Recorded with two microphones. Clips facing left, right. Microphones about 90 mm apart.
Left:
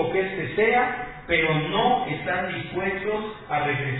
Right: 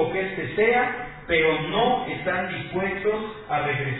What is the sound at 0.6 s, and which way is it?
Speech, 30° right (ahead or behind).